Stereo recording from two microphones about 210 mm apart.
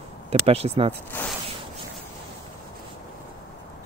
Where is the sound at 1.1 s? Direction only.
10° left (ahead or behind).